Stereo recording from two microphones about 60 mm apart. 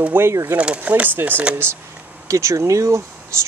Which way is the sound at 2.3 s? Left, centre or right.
Right.